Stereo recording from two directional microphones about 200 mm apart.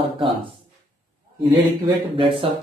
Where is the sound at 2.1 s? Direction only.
25° right (ahead or behind).